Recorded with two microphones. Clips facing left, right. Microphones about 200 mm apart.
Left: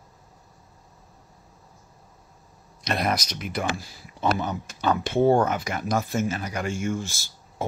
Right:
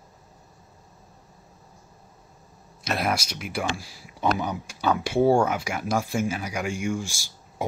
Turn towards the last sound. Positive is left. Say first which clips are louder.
# even
turn(degrees=-15)  # may be behind; listen again after turning